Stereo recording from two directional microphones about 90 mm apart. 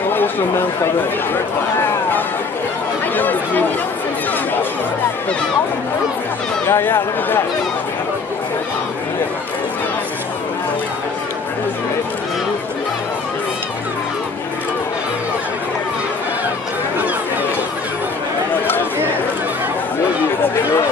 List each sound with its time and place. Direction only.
0.1 s chatter: 25° left (ahead or behind)
3.2 s chatter: 20° left (ahead or behind)
6.7 s speech: 25° left (ahead or behind)